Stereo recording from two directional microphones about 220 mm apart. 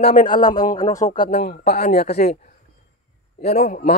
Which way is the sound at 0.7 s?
15° left (ahead or behind).